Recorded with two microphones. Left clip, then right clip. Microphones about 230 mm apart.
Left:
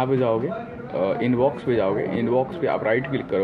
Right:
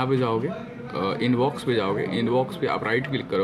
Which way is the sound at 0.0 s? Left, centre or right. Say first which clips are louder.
Left 3 dB; right.